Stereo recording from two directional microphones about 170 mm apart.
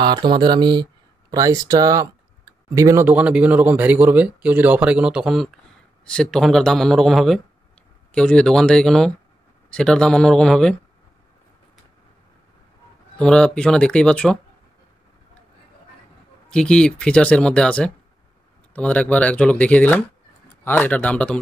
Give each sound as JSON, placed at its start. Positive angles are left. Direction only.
{"t": 0.0, "sound": "speech", "side_deg": -25}
{"t": 13.2, "sound": "speech", "side_deg": 5}
{"t": 16.4, "sound": "speech", "side_deg": 5}